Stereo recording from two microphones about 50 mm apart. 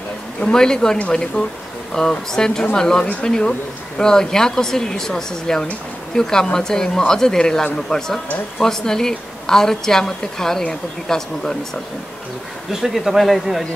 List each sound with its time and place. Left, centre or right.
0.4 s a woman's voice: centre
12.8 s a man's voice: centre